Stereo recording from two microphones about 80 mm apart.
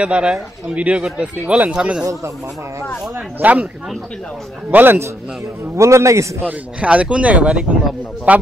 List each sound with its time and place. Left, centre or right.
0.0 s speech: centre
3.3 s a man's voice: centre
4.6 s a man's voice: right
6.8 s speech: centre